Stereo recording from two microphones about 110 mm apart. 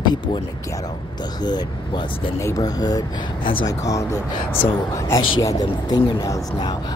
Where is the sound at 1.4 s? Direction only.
40° left (ahead or behind).